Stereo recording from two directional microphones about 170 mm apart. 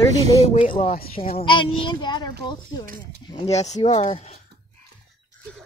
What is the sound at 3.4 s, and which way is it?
Speech, 40° left (ahead or behind).